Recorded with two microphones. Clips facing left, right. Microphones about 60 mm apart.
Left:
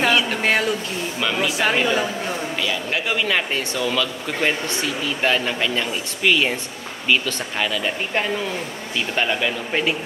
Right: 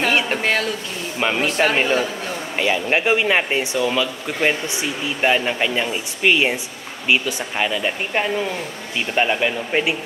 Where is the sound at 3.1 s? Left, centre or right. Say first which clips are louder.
Right 3 dB; right.